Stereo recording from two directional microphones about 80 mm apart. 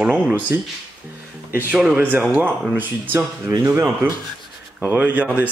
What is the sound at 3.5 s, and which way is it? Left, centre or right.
Speech, right.